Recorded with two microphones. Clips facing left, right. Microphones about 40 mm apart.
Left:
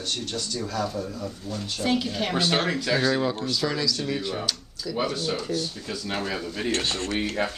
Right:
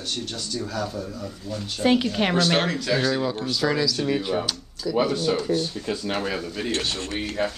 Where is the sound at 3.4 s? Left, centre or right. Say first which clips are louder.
Right 3 dB; centre.